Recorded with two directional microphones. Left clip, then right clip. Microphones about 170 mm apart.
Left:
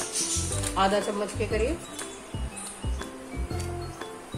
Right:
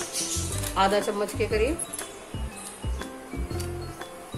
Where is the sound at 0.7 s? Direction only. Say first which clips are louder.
Right 2 dB; 10° right (ahead or behind).